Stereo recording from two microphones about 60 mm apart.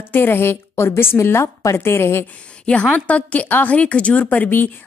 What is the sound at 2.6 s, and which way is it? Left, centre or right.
A woman's voice, left.